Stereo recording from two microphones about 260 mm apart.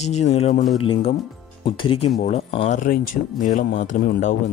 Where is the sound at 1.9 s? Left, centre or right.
Left.